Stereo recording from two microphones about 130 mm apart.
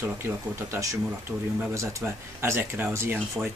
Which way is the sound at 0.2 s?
20° right (ahead or behind).